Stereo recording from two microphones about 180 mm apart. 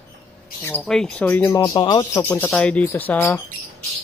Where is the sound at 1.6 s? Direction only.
25° left (ahead or behind).